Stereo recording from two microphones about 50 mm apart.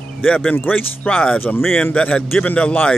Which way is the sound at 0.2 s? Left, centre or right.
Left.